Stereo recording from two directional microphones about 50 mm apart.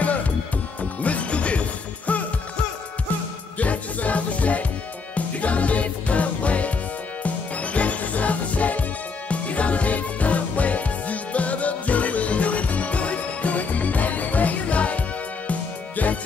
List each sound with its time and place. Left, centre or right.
1.0 s music: left
3.5 s music: left